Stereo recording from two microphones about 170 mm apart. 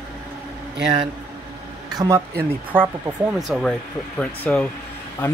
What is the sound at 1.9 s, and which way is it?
Speech, 20° right (ahead or behind).